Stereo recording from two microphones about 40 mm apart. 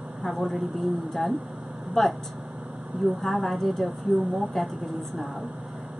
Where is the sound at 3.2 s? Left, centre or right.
Centre.